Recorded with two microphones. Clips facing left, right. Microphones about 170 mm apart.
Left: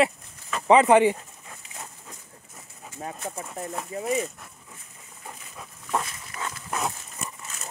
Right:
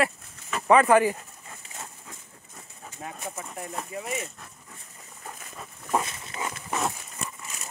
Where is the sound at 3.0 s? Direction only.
30° left (ahead or behind).